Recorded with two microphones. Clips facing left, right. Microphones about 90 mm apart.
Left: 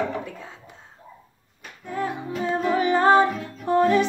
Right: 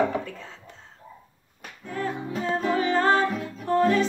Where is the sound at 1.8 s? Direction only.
15° left (ahead or behind).